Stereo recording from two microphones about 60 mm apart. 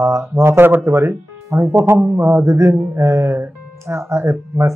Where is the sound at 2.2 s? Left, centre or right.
Right.